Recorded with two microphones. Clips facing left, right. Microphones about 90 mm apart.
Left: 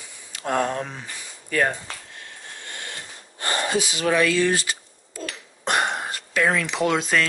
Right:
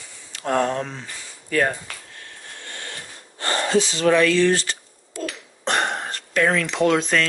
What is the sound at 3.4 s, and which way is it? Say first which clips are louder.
Speech: right 3 dB; 15° left (ahead or behind).